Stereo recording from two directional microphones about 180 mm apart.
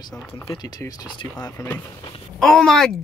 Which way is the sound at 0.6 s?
20° left (ahead or behind).